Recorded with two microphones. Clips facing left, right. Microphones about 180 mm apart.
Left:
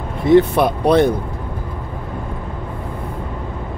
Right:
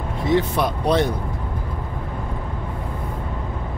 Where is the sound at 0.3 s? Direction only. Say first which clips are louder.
Left 8 dB; 60° left (ahead or behind).